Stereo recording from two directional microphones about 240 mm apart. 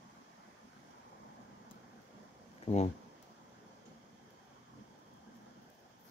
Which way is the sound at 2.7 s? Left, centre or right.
Left.